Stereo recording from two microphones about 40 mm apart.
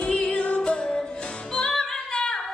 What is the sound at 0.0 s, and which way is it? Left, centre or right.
Music, left.